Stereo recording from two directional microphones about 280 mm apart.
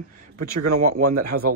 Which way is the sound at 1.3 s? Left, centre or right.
Right.